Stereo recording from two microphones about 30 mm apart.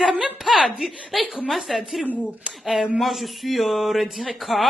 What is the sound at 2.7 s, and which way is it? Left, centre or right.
Speech, centre.